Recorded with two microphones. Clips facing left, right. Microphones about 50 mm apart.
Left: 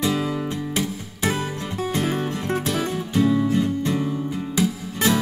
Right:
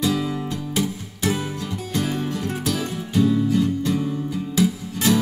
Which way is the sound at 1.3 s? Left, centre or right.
Left.